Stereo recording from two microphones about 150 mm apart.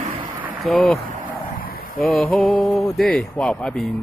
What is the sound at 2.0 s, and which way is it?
Speech, centre (ahead or behind).